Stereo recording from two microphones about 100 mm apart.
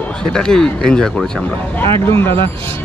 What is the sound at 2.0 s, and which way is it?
Speech, 25° left (ahead or behind).